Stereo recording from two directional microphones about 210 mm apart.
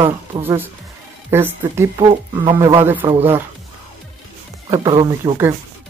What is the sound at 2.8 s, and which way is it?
Speech, 10° right (ahead or behind).